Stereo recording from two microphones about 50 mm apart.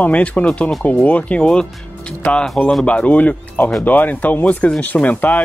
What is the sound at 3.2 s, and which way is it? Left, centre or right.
Speech, left.